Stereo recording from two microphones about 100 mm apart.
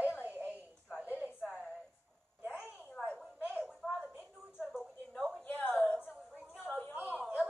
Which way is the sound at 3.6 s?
5° left (ahead or behind).